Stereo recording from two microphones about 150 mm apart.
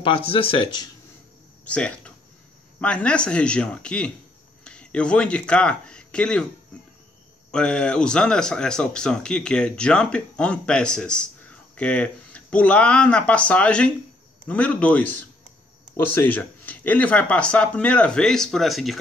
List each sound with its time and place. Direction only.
0.0 s speech: 35° left (ahead or behind)
1.6 s speech: 10° left (ahead or behind)
7.5 s speech: 5° left (ahead or behind)